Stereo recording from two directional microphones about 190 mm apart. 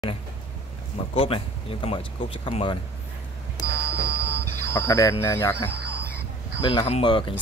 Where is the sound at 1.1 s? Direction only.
30° left (ahead or behind).